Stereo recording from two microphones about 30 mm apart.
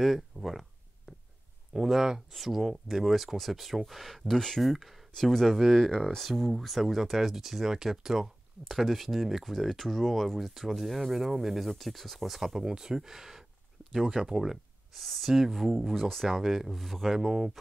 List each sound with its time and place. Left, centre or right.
0.0 s a sound: centre
1.7 s speech: centre
2.3 s speech: centre
3.3 s speech: centre
4.6 s speech: centre
5.1 s speech: centre
8.6 s speech: centre
12.5 s speech: right
15.0 s speech: centre
16.7 s speech: centre
17.2 s speech: centre